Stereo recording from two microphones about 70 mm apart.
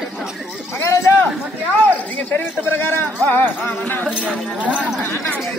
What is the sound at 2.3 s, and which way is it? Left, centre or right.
Speech, left.